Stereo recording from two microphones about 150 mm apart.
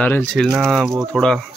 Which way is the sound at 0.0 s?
10° left (ahead or behind).